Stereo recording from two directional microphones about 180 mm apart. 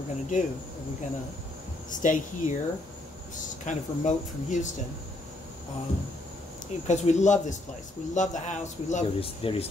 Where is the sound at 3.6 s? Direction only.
45° left (ahead or behind).